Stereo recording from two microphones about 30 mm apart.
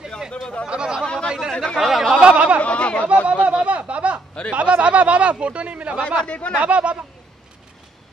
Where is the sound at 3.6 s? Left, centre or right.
Right.